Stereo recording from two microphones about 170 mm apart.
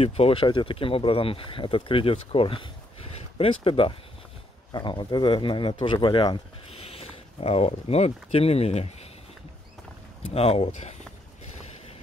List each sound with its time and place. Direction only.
0.0 s speech: 35° left (ahead or behind)
10.2 s speech: 35° left (ahead or behind)